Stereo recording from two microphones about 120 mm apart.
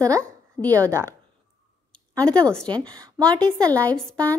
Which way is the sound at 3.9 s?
10° left (ahead or behind).